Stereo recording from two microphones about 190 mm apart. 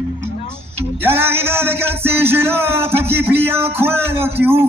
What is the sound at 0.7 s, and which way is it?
Music, 10° right (ahead or behind).